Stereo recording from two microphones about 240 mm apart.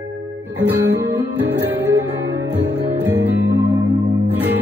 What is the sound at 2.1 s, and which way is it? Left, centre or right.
Music, right.